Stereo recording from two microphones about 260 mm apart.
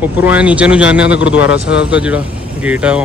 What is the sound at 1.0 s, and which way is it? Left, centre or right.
Speech, left.